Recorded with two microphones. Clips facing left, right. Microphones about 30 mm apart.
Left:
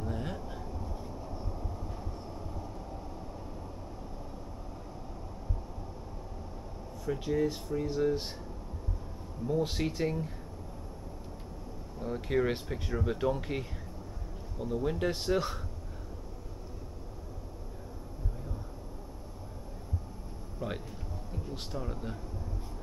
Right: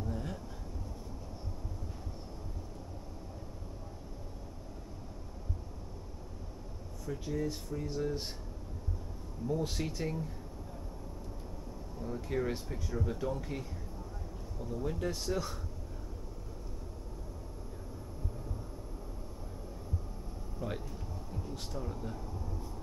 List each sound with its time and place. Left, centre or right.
0.0 s vehicle: left
7.1 s speech: left
9.5 s speech: left
12.0 s speech: left
20.5 s a sound: centre